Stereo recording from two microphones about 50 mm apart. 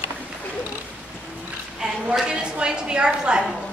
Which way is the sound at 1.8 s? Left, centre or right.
Centre.